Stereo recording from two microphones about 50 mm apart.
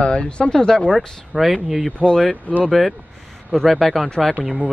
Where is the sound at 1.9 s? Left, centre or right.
Left.